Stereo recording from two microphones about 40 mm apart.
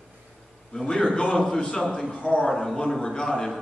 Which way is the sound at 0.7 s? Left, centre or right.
Centre.